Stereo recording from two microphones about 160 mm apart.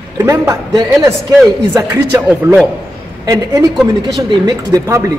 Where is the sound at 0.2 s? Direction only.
20° right (ahead or behind).